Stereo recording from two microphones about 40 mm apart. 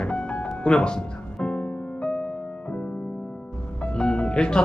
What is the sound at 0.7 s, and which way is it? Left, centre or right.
Speech, left.